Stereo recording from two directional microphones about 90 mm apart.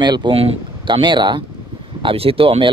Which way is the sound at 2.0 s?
90° right.